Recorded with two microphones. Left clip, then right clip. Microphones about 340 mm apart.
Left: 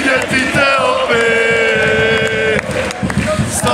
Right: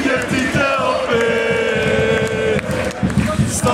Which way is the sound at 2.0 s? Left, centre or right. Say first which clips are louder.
Left 4 dB; centre.